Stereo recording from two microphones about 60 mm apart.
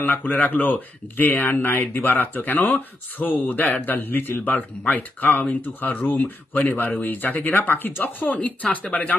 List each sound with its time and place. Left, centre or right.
0.0 s speech: left